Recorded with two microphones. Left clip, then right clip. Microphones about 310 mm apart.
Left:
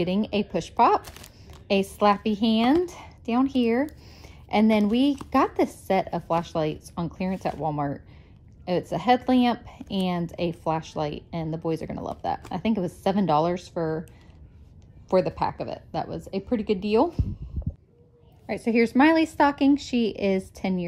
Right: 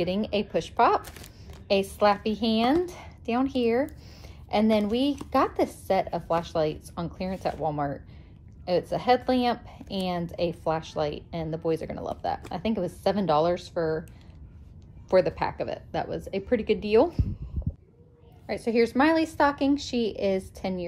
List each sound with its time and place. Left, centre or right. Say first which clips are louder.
0.0 s a woman's voice: left 1 dB; centre
1.0 s a woman's voice: left 1 dB; centre
1.7 s a woman's voice: left 1 dB; left
15.0 s a woman's voice: even; centre
18.5 s a woman's voice: left 1 dB; left